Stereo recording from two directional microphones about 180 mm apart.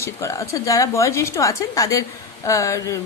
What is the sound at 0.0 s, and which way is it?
A woman's voice, 15° left (ahead or behind).